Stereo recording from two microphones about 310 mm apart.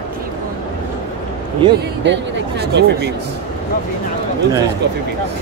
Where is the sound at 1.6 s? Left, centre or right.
Centre.